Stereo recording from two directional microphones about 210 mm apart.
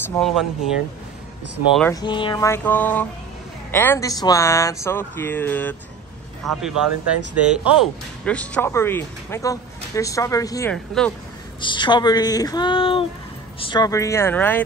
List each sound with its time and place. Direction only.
0.2 s speech: centre (ahead or behind)
1.9 s speech: 20° left (ahead or behind)
6.6 s speech: 5° right (ahead or behind); by 10.7 s 15° left (ahead or behind)
10.7 s speech: 5° left (ahead or behind)
11.6 s speech: 20° left (ahead or behind)